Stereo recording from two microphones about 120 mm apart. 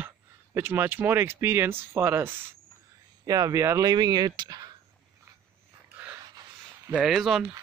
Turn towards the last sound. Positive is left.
turn(degrees=0)  # may be behind; listen again after turning